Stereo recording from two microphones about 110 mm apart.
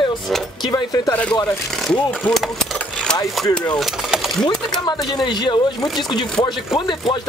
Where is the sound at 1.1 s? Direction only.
15° left (ahead or behind).